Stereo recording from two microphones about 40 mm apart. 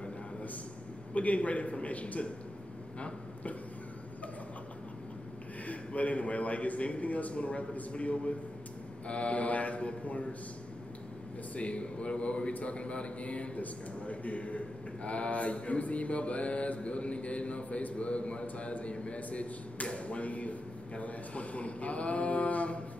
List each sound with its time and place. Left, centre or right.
1.1 s mantra: left
5.7 s mantra: left
11.5 s a man's voice: left
13.6 s mantra: left